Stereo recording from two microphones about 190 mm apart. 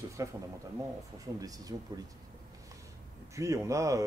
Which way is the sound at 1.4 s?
20° right (ahead or behind).